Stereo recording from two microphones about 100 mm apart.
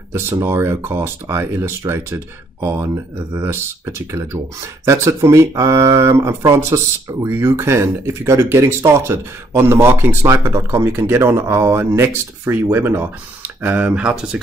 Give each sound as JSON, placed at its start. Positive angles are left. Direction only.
{"t": 0.1, "sound": "speech", "side_deg": -25}